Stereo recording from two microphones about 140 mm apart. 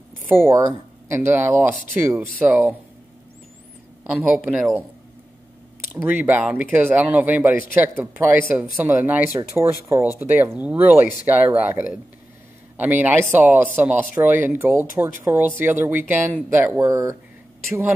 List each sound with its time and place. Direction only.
0.3 s speech: 20° right (ahead or behind)
4.0 s a man's voice: 5° right (ahead or behind)
6.0 s speech: 10° right (ahead or behind)
16.8 s speech: 25° right (ahead or behind)